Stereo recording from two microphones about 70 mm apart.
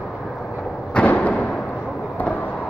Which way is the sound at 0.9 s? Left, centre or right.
Centre.